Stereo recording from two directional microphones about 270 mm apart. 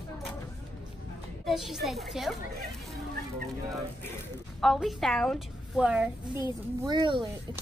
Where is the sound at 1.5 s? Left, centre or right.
Centre.